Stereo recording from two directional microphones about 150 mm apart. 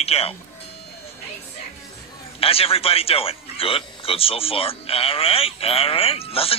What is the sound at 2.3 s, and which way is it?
A man's voice, 40° left (ahead or behind).